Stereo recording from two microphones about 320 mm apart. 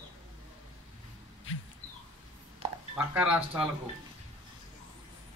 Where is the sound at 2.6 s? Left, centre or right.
Centre.